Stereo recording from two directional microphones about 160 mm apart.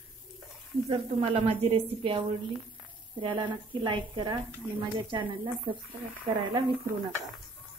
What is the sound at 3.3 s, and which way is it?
A woman's voice, 30° right (ahead or behind).